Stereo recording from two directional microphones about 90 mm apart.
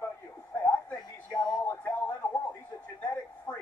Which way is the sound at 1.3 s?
50° left (ahead or behind).